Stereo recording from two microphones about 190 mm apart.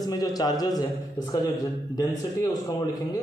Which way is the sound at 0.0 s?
20° left (ahead or behind).